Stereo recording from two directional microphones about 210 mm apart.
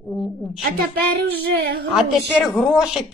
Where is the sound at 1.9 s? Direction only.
Centre (ahead or behind).